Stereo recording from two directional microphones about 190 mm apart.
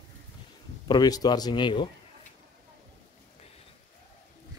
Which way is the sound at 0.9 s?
20° left (ahead or behind).